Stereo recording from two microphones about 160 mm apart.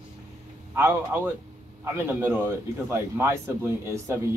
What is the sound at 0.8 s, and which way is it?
Speech, 15° right (ahead or behind).